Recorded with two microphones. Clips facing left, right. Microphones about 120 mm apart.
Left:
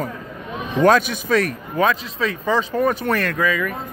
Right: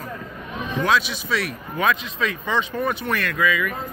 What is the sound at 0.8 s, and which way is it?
Speech, 50° left (ahead or behind).